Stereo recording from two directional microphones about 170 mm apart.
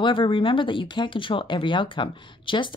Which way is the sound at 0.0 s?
30° left (ahead or behind).